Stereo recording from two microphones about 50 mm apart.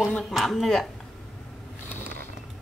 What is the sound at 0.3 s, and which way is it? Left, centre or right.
Speech, centre.